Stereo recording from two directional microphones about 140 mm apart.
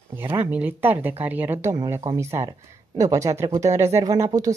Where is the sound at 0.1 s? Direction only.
15° right (ahead or behind).